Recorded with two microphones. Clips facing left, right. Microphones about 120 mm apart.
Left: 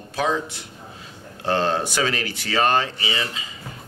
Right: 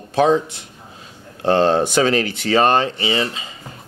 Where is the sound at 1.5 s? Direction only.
20° right (ahead or behind).